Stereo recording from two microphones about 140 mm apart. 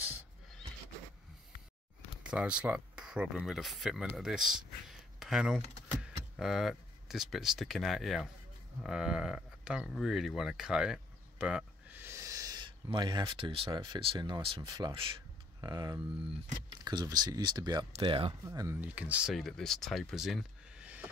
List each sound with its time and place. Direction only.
2.3 s speech: 10° right (ahead or behind); by 16.0 s 30° right (ahead or behind)
16.0 s speech: 5° right (ahead or behind)
16.6 s speech: 30° right (ahead or behind)
18.4 s speech: 25° right (ahead or behind)
18.9 s speech: 10° right (ahead or behind)